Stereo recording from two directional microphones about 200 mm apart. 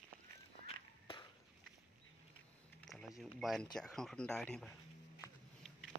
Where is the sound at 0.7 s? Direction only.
25° left (ahead or behind).